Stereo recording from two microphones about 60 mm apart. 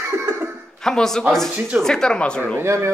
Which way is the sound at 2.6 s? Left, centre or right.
Right.